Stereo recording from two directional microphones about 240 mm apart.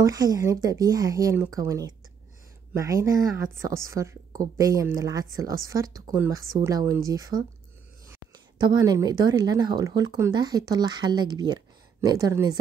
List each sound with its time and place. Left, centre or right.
0.0 s a woman's voice: centre